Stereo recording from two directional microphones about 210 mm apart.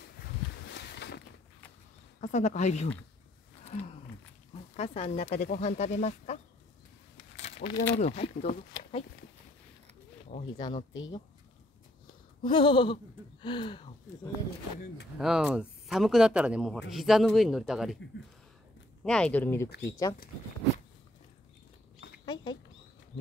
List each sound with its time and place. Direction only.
0.7 s a sound: 55° left (ahead or behind)
2.1 s speech: 35° left (ahead or behind)
4.7 s speech: 30° left (ahead or behind)
7.2 s a sound: 30° left (ahead or behind)
7.9 s speech: 30° left (ahead or behind)
10.6 s speech: 25° left (ahead or behind)
12.4 s speech: 25° left (ahead or behind)
15.1 s speech: centre (ahead or behind)
19.0 s speech: 5° left (ahead or behind)
22.2 s rodents: 20° left (ahead or behind)